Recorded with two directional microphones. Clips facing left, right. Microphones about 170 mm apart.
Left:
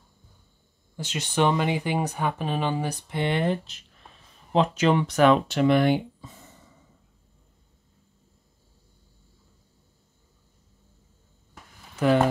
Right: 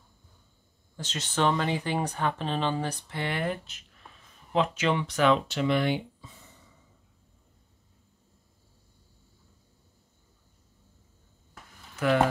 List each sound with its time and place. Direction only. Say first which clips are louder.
0.9 s speech: left 4 dB; 10° left (ahead or behind); by 6.5 s 45° left (ahead or behind)